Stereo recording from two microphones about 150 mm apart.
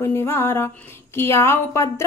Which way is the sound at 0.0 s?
15° left (ahead or behind).